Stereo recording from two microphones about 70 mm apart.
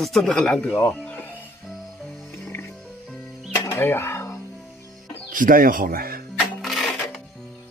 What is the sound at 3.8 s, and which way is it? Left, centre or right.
Speech, left.